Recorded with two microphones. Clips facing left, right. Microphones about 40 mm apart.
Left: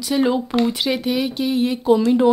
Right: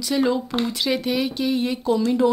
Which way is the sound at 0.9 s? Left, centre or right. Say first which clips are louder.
Left 2 dB; centre.